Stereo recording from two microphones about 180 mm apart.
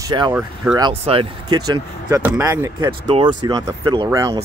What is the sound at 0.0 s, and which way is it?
Speech, 25° right (ahead or behind).